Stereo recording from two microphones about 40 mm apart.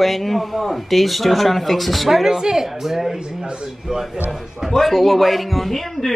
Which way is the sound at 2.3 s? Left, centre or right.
Centre.